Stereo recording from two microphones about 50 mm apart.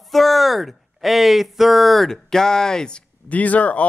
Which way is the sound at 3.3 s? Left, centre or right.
Left.